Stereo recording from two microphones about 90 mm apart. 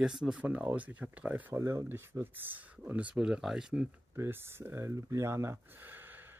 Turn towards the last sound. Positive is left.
turn(degrees=-20)  # may be behind; listen again after turning